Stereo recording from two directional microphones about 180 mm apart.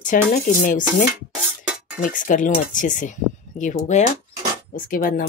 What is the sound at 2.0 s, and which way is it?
Speech, 50° left (ahead or behind).